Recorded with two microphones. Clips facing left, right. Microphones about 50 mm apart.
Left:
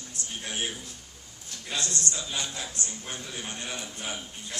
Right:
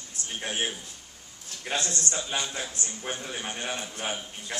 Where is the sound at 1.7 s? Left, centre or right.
Right.